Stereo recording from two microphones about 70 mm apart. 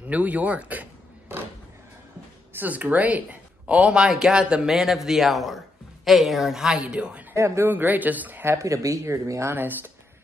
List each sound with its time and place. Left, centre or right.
0.0 s speech: right
2.5 s speech: right
7.3 s speech: right
7.6 s speech: right
8.5 s speech: right
9.5 s speech: right